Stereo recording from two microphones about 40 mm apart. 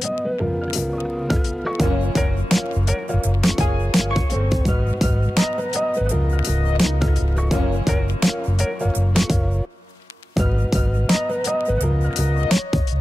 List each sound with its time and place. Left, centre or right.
1.3 s music: centre